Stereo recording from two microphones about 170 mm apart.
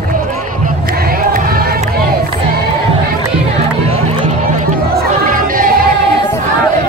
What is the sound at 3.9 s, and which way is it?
Music, 40° right (ahead or behind).